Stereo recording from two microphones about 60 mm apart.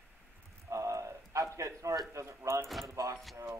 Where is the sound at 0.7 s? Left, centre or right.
Right.